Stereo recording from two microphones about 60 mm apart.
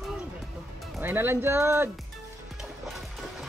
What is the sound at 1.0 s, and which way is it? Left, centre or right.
Speech, right.